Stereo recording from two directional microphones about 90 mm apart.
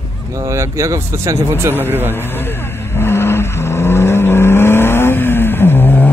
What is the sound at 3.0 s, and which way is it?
Vehicle, 25° left (ahead or behind).